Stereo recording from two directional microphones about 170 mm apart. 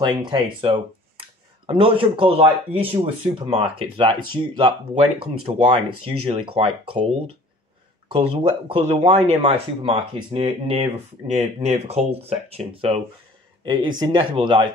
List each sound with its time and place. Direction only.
0.0 s speech: 25° right (ahead or behind)